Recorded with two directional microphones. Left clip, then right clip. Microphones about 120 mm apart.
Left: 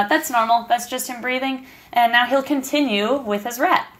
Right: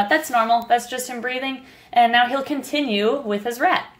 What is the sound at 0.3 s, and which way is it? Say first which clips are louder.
Speech: even; 30° right (ahead or behind).